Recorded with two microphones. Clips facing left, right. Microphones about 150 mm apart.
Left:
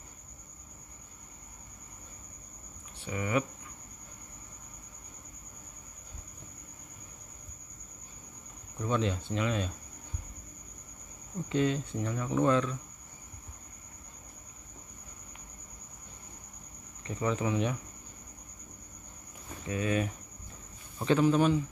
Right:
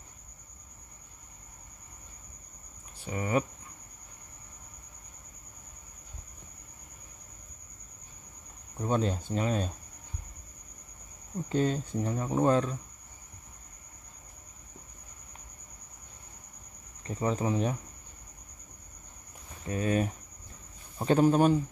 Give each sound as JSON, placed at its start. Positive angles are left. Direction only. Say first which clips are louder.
{"t": 3.0, "sound": "speech", "louder": "right 2 dB", "side_deg": -35}
{"t": 8.7, "sound": "speech", "louder": "right 2 dB", "side_deg": -40}
{"t": 11.4, "sound": "speech", "louder": "even", "side_deg": -40}
{"t": 17.0, "sound": "speech", "louder": "right 1 dB", "side_deg": -35}
{"t": 19.7, "sound": "speech", "louder": "right 2 dB", "side_deg": -40}